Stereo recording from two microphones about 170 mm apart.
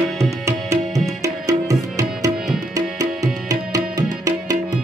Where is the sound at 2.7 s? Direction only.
20° right (ahead or behind).